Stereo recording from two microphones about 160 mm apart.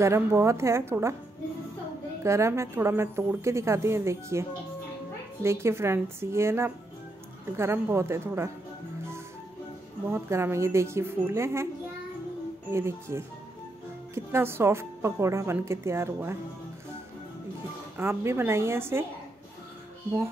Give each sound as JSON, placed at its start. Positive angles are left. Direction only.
{"t": 0.0, "sound": "speech", "side_deg": -15}
{"t": 2.2, "sound": "speech", "side_deg": -15}
{"t": 10.0, "sound": "speech", "side_deg": -15}
{"t": 12.7, "sound": "speech", "side_deg": -15}
{"t": 17.9, "sound": "speech", "side_deg": -15}